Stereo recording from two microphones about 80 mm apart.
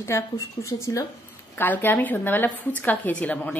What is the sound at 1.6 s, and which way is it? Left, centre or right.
A woman's voice, left.